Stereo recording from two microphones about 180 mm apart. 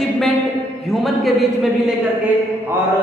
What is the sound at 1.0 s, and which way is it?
Speech, centre (ahead or behind).